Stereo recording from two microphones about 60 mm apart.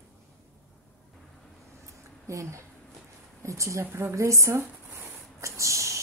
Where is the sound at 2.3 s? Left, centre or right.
Right.